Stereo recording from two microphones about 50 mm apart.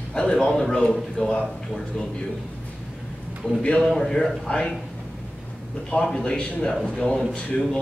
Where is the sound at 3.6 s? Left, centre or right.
Left.